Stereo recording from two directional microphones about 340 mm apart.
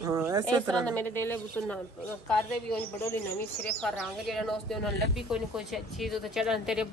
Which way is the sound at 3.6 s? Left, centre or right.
Centre.